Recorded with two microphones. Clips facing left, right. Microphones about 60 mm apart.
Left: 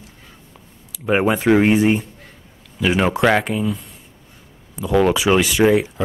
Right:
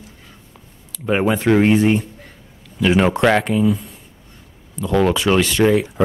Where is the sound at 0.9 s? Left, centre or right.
Centre.